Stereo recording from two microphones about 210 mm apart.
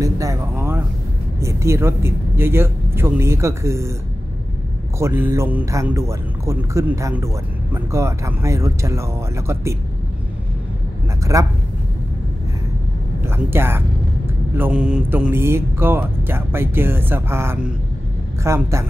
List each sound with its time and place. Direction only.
0.0 s a sound: 15° right (ahead or behind)
1.4 s speech: 15° right (ahead or behind)
4.9 s speech: 10° right (ahead or behind)
11.3 s speech: 15° right (ahead or behind)
13.2 s speech: 10° right (ahead or behind)